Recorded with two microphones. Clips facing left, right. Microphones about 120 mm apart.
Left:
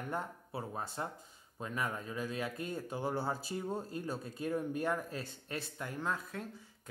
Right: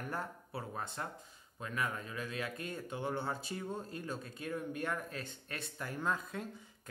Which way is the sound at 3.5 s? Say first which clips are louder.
Left 3 dB; 20° left (ahead or behind).